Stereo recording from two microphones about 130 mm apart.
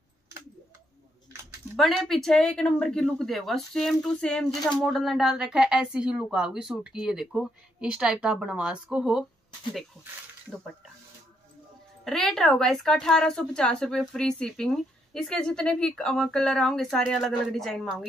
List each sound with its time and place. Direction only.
1.8 s a woman's voice: centre (ahead or behind)
4.5 s speech: 30° left (ahead or behind)
4.7 s a woman's voice: centre (ahead or behind)
12.0 s a woman's voice: 5° left (ahead or behind)